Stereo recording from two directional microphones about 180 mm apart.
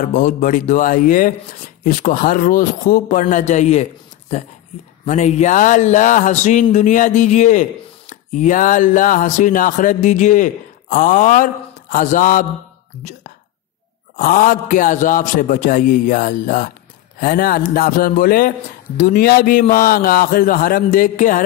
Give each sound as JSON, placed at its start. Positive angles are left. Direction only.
{"t": 0.1, "sound": "speech", "side_deg": 45}
{"t": 5.0, "sound": "speech", "side_deg": 40}
{"t": 14.1, "sound": "speech", "side_deg": 50}